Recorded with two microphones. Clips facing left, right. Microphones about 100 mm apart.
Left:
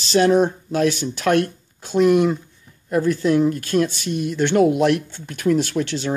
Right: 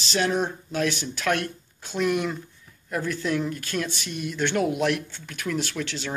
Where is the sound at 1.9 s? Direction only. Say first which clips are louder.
Left 9 dB; 30° left (ahead or behind).